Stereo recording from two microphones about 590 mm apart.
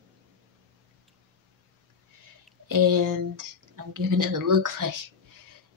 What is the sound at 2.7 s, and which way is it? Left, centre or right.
Speech, right.